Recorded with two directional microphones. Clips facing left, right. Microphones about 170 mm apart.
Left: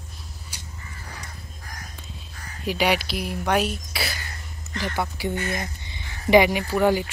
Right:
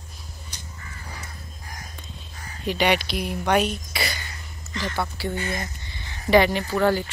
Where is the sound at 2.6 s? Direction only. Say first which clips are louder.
Right 1 dB; 5° left (ahead or behind).